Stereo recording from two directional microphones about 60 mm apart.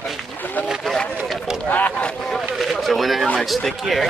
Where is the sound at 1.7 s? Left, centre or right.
Left.